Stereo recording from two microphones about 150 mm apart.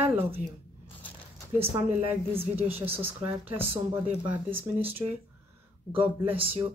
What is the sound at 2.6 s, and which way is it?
Speech, 15° right (ahead or behind).